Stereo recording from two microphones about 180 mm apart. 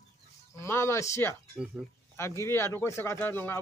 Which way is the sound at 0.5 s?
15° left (ahead or behind).